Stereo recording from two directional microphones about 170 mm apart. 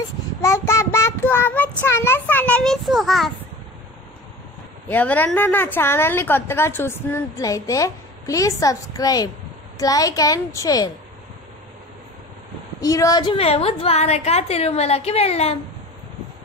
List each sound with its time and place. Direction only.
0.4 s child singing: 15° left (ahead or behind)
1.8 s a woman's voice: 15° left (ahead or behind)
4.8 s a woman's voice: 10° left (ahead or behind)
12.8 s a woman's voice: 20° left (ahead or behind); by 15.5 s 35° left (ahead or behind)